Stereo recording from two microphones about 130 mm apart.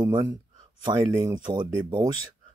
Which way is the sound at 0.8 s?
30° right (ahead or behind).